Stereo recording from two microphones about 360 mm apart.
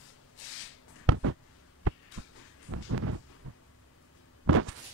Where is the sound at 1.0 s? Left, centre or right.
Right.